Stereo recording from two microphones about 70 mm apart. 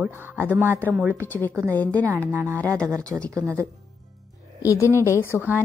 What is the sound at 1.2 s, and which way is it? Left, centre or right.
Speech, left.